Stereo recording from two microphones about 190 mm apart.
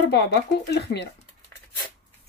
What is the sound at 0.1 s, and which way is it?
Speech, 60° left (ahead or behind).